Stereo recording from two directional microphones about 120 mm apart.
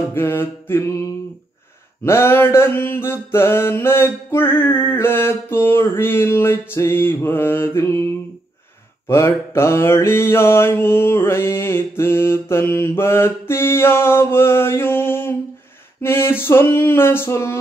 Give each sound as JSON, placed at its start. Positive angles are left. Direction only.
{"t": 0.1, "sound": "mantra", "side_deg": 20}
{"t": 9.0, "sound": "mantra", "side_deg": 20}